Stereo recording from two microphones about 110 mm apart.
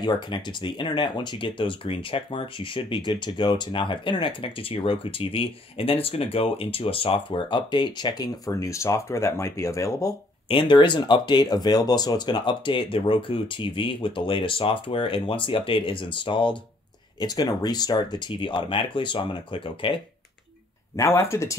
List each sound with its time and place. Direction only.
0.0 s speech: 45° left (ahead or behind)
10.5 s speech: 45° left (ahead or behind)
17.2 s speech: 35° left (ahead or behind)
20.9 s speech: 25° left (ahead or behind)